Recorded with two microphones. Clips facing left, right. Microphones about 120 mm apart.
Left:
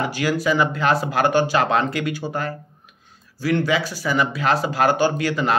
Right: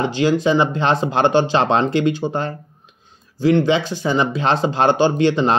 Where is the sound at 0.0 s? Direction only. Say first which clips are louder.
Right 5 dB; 20° right (ahead or behind).